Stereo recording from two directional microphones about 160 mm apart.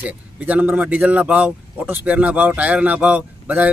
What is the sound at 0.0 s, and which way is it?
Speech, 10° right (ahead or behind).